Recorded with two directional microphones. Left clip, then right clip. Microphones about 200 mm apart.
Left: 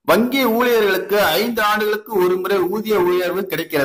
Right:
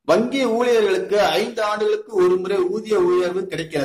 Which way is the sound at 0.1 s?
20° left (ahead or behind).